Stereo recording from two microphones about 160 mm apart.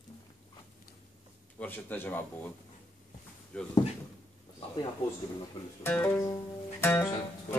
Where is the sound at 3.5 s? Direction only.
5° left (ahead or behind).